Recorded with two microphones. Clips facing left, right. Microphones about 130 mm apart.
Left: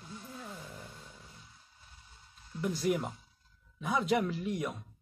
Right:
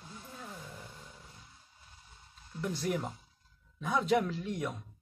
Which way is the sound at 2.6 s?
5° left (ahead or behind).